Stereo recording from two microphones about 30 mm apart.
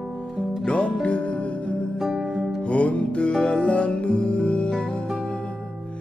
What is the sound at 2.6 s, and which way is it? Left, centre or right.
Music, left.